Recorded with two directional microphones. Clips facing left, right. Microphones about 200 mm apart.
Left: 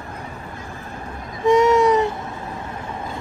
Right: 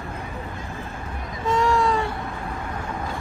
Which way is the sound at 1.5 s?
20° left (ahead or behind).